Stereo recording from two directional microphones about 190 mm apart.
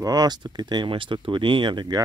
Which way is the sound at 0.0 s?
20° right (ahead or behind).